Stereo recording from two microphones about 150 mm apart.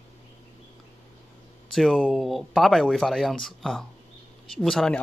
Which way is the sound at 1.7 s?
Centre (ahead or behind).